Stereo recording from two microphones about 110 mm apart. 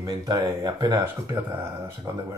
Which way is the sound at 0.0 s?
35° right (ahead or behind).